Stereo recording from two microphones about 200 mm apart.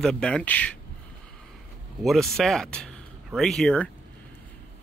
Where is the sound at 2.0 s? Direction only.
Centre (ahead or behind).